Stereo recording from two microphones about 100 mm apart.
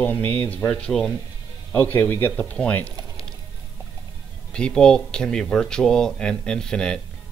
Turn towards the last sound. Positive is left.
turn(degrees=5)  # may be behind; listen again after turning